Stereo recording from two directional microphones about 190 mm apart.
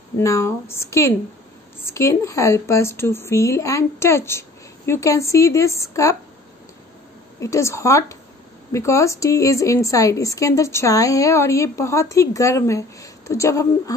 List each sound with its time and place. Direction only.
0.2 s a woman's voice: 15° left (ahead or behind)
7.3 s a woman's voice: 15° left (ahead or behind)